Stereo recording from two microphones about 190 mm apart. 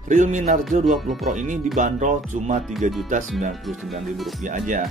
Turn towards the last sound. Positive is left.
turn(degrees=-40)  # may be behind; listen again after turning